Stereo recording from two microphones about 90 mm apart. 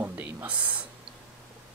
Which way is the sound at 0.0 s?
20° right (ahead or behind).